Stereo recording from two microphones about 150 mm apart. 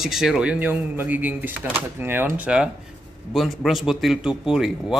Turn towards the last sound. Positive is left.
turn(degrees=-5)  # may be behind; listen again after turning